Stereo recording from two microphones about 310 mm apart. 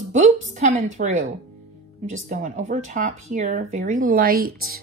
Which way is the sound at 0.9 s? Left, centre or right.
Right.